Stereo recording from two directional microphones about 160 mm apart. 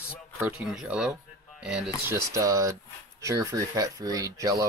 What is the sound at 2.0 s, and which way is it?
Speech, 20° right (ahead or behind).